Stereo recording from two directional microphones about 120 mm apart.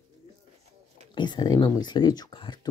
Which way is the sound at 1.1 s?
35° left (ahead or behind).